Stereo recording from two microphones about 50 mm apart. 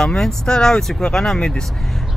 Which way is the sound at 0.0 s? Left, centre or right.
Centre.